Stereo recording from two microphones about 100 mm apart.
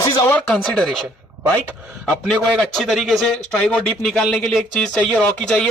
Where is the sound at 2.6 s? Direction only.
5° left (ahead or behind).